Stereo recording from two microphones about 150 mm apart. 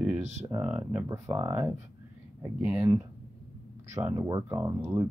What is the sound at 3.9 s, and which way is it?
Speech, 20° right (ahead or behind).